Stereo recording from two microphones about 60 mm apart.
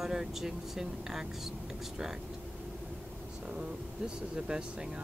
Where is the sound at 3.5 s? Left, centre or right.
Centre.